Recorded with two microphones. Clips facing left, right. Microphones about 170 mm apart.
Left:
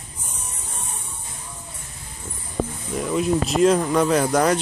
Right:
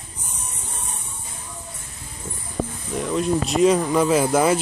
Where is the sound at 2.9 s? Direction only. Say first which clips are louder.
Even; centre (ahead or behind).